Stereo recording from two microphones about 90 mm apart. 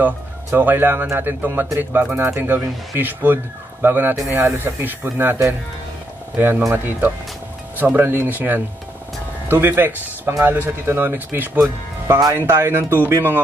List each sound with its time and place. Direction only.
0.0 s speech: 20° right (ahead or behind)
7.7 s speech: 20° right (ahead or behind)